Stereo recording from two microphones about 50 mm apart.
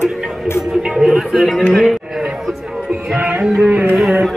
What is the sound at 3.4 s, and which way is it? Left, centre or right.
Speech, centre.